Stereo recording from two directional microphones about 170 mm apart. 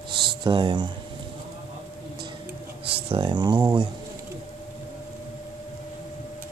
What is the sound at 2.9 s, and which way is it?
Speech, 35° right (ahead or behind).